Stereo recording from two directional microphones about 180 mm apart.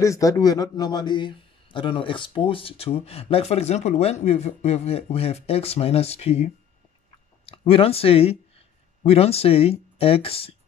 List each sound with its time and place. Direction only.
0.0 s a man's voice: 20° left (ahead or behind)